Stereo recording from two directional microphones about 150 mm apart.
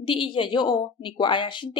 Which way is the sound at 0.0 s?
35° left (ahead or behind).